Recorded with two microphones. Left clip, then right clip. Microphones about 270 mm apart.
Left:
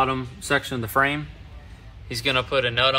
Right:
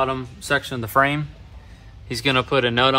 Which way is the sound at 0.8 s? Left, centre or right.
Right.